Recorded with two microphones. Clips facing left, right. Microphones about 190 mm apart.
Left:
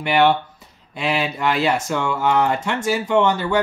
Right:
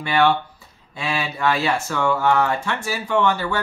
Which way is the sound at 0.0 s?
20° left (ahead or behind).